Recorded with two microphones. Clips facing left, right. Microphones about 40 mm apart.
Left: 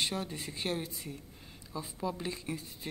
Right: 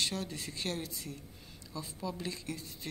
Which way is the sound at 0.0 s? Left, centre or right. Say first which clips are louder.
Left 1 dB; centre.